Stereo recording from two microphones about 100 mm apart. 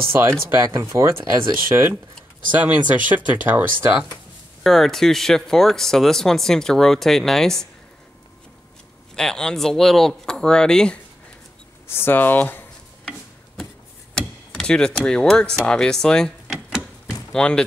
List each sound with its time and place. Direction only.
0.1 s speech: 25° right (ahead or behind)
4.6 s speech: centre (ahead or behind)
9.1 s speech: 5° left (ahead or behind)
11.9 s speech: 20° left (ahead or behind)
14.1 s speech: 5° left (ahead or behind)
17.1 s a sound: 5° left (ahead or behind)